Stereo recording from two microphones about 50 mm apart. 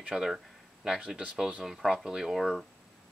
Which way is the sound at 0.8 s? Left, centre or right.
Centre.